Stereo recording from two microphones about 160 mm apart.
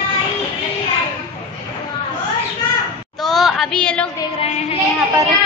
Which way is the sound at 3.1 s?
Centre (ahead or behind).